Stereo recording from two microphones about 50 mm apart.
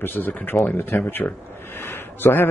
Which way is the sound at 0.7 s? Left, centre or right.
Left.